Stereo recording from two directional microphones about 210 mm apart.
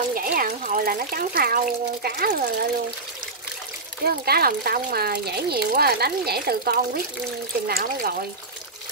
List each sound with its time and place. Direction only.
0.1 s water: 45° right (ahead or behind)
2.0 s a child's voice: 45° right (ahead or behind)
4.0 s a child's voice: 45° right (ahead or behind)